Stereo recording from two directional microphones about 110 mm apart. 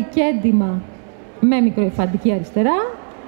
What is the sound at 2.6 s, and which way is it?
Speech, 20° right (ahead or behind).